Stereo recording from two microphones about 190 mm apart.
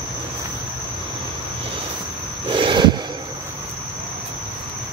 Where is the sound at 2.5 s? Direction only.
25° right (ahead or behind).